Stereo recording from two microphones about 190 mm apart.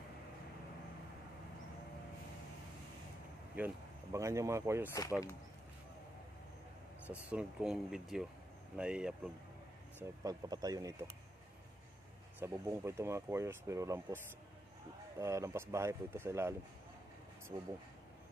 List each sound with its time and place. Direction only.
3.5 s speech: 10° right (ahead or behind)
7.1 s speech: 5° right (ahead or behind)
10.2 s speech: 20° right (ahead or behind)
12.4 s speech: 15° right (ahead or behind)
17.5 s speech: 25° right (ahead or behind)